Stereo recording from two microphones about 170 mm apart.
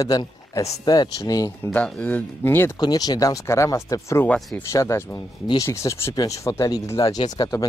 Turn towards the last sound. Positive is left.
turn(degrees=20)  # may be behind; listen again after turning